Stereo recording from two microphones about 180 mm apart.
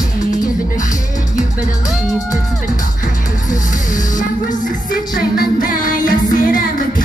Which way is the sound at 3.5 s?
45° left (ahead or behind).